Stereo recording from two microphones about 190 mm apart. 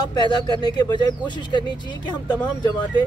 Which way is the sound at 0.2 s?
25° left (ahead or behind).